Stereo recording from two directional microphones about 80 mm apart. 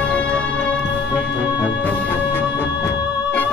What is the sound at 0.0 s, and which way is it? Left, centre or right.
Music, centre.